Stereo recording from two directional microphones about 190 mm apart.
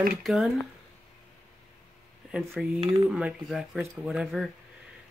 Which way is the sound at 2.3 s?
5° right (ahead or behind).